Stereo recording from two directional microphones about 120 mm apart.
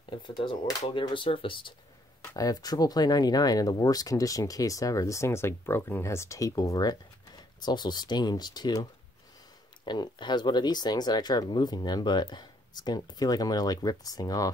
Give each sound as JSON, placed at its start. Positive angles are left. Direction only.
{"t": 0.1, "sound": "speech", "side_deg": 45}
{"t": 2.2, "sound": "speech", "side_deg": 30}
{"t": 9.8, "sound": "speech", "side_deg": 40}